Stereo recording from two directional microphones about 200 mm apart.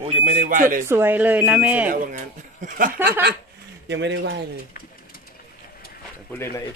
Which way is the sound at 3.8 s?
65° right (ahead or behind).